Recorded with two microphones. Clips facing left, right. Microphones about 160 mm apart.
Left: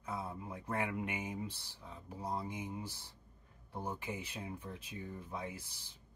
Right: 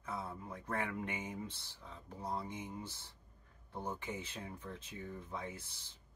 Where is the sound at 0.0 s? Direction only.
10° left (ahead or behind).